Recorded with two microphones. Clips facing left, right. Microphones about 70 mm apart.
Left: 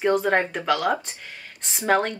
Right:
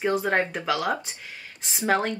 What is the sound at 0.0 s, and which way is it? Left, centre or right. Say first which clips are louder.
A woman's voice: left 3 dB; centre.